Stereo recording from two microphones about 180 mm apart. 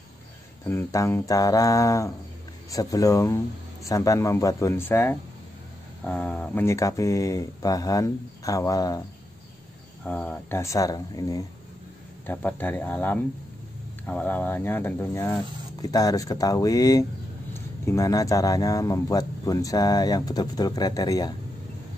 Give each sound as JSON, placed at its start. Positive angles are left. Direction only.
{"t": 0.7, "sound": "speech", "side_deg": 15}
{"t": 10.0, "sound": "speech", "side_deg": 5}
{"t": 12.3, "sound": "speech", "side_deg": 10}